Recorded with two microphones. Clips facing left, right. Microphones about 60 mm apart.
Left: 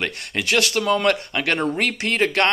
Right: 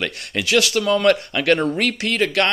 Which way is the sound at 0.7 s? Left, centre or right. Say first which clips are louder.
Right 3 dB; left.